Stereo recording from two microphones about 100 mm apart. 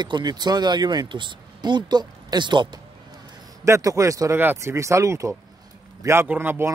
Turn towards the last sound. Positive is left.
turn(degrees=-20)  # may be behind; listen again after turning